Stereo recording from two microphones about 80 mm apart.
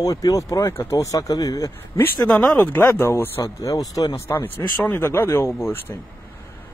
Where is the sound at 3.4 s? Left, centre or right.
Left.